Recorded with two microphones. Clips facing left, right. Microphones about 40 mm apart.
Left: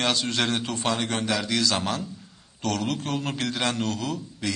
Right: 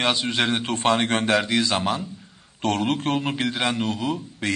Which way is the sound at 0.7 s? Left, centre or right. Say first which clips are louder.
Right 6 dB; right.